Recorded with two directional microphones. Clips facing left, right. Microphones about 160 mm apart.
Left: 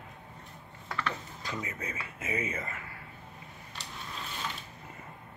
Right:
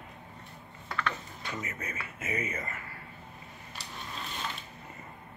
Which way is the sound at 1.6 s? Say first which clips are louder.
Left 1 dB; 15° left (ahead or behind).